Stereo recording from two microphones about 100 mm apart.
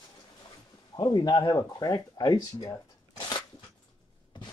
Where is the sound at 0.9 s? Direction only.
45° left (ahead or behind).